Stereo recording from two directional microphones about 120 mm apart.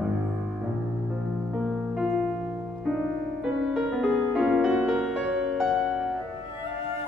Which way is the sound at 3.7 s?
Centre (ahead or behind).